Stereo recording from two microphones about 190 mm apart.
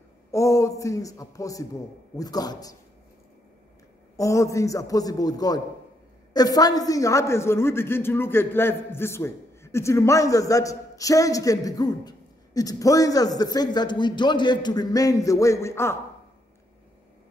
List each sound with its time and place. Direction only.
0.3 s a man's voice: 15° left (ahead or behind)
4.2 s a man's voice: 15° left (ahead or behind)